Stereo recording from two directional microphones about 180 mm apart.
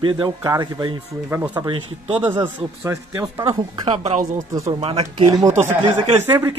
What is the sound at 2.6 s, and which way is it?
Speech, 15° right (ahead or behind).